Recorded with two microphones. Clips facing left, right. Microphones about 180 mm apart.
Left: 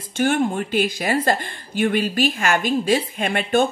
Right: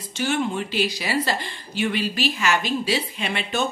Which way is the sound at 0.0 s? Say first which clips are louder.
Left 5 dB; 50° left (ahead or behind).